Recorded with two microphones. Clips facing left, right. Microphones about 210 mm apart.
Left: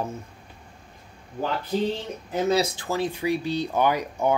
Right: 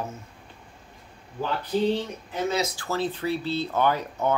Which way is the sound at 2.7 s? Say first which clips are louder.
Left 1 dB; 15° left (ahead or behind).